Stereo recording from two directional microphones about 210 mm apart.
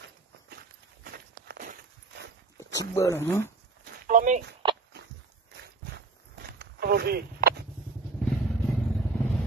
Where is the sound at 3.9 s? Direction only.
35° right (ahead or behind).